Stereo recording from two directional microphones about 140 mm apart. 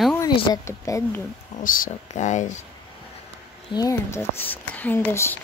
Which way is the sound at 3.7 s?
25° left (ahead or behind).